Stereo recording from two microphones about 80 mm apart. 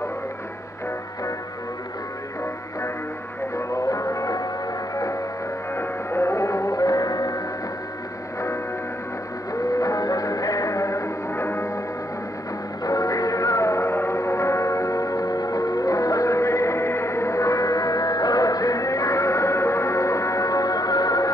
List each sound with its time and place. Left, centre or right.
3.5 s music: left
5.8 s music: left
9.5 s music: left
12.8 s music: left